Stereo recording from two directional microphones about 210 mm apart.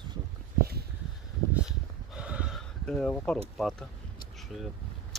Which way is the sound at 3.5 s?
Centre (ahead or behind).